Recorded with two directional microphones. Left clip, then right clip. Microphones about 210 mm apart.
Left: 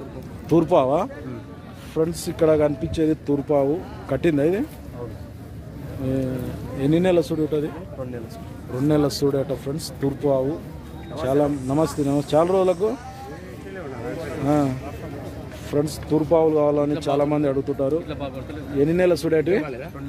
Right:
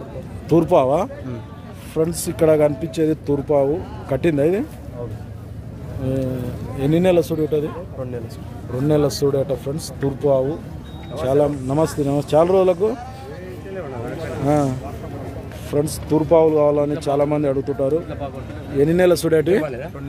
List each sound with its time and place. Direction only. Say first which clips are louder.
0.5 s speech: right 3 dB; centre (ahead or behind)
6.8 s speech: right 3 dB; 5° right (ahead or behind)
8.8 s speech: right 2 dB; centre (ahead or behind)
14.4 s a man's voice: right 3 dB; 10° right (ahead or behind)
15.7 s speech: right 2 dB; centre (ahead or behind)
19.6 s a man's voice: right 5 dB; 45° right (ahead or behind)